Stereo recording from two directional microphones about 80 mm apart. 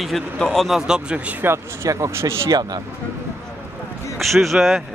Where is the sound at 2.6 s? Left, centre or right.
Right.